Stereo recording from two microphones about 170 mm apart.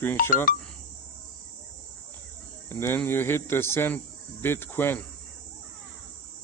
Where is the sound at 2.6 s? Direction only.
15° left (ahead or behind).